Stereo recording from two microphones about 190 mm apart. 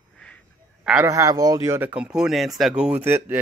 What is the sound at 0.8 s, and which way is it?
Speech, 15° right (ahead or behind).